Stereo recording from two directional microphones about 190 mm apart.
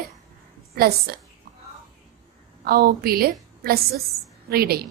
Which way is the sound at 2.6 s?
50° right (ahead or behind).